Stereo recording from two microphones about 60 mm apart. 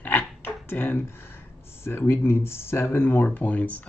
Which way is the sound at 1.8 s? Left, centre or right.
Left.